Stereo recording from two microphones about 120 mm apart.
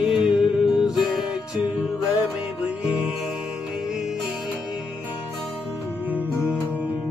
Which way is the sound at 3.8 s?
Centre (ahead or behind).